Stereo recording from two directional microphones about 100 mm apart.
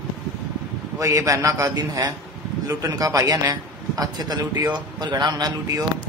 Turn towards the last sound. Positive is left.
turn(degrees=-35)  # may be behind; listen again after turning